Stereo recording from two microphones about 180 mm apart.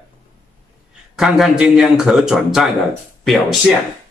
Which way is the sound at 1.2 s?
Centre (ahead or behind).